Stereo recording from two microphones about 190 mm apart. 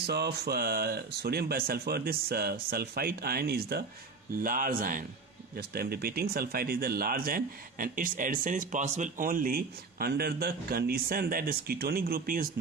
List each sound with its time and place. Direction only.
0.0 s speech: 60° right (ahead or behind)